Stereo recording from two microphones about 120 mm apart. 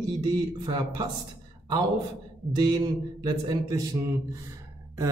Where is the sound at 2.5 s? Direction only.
40° right (ahead or behind).